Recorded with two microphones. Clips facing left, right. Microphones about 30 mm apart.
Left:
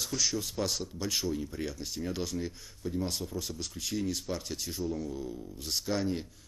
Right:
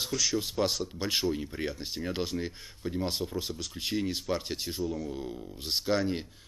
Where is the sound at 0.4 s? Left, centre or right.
Right.